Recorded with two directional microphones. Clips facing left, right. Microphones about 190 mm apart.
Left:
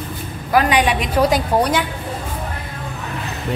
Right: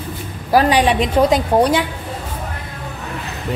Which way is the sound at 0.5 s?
30° right (ahead or behind).